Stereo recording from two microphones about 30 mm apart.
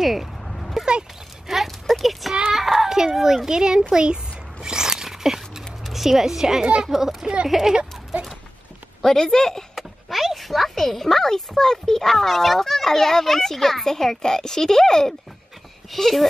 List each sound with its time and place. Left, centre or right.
0.0 s speech: centre
0.5 s a sound: centre
1.5 s clip-clop: centre
2.5 s child singing: centre
3.2 s a child's voice: centre
3.4 s a child's voice: right
3.9 s biting: right
5.9 s a child's voice: centre
8.1 s a sound: right
9.0 s speech: centre
9.8 s speech: centre
15.9 s speech: centre